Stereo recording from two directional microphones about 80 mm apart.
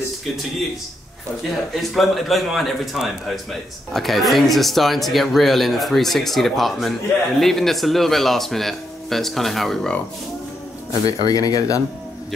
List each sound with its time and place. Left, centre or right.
1.8 s speech: centre
11.1 s speech: left